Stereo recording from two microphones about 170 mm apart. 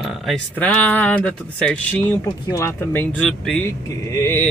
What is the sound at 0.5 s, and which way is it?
Speech, 10° left (ahead or behind).